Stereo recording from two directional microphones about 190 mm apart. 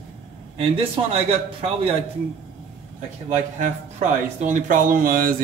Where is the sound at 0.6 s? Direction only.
30° right (ahead or behind).